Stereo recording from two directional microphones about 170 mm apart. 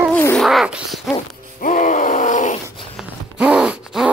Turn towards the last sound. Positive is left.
turn(degrees=-5)  # may be behind; listen again after turning